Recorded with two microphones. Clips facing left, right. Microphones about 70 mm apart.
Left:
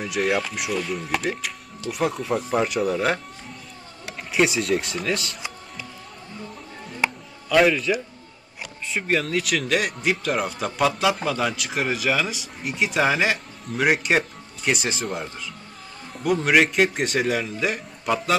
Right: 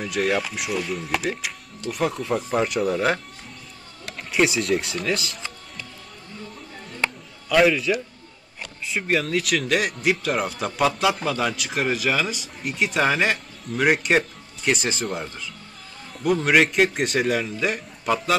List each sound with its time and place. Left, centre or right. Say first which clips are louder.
0.0 s speech: even; centre
7.0 s music: left 2 dB; centre
8.8 s speech: even; centre